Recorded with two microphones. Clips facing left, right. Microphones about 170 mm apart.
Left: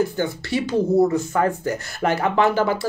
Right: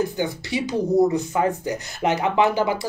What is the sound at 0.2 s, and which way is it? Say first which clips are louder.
Speech: left 2 dB; 15° right (ahead or behind).